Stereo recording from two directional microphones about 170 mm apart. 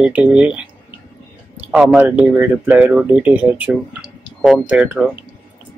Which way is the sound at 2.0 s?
10° right (ahead or behind).